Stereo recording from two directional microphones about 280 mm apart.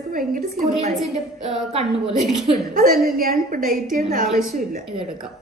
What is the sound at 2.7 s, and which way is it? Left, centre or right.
A woman's voice, right.